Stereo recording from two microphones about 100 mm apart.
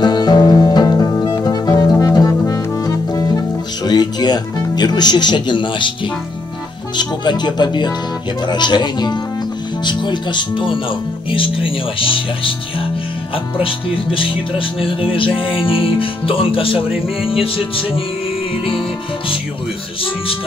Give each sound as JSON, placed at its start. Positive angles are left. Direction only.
{"t": 0.0, "sound": "music", "side_deg": 45}
{"t": 7.0, "sound": "speech", "side_deg": 45}
{"t": 13.6, "sound": "speech", "side_deg": 65}
{"t": 17.2, "sound": "music", "side_deg": 65}